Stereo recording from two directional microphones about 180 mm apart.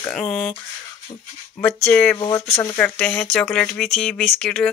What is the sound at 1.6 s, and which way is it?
Speech, 5° left (ahead or behind).